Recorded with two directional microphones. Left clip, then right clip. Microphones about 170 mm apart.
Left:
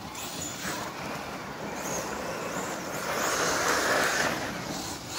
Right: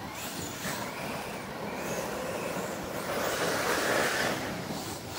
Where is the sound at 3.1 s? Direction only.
60° left (ahead or behind).